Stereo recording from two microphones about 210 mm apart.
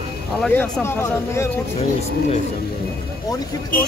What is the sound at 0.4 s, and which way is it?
Speech, 5° left (ahead or behind).